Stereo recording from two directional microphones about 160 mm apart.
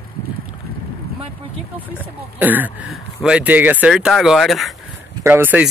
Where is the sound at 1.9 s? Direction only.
10° right (ahead or behind).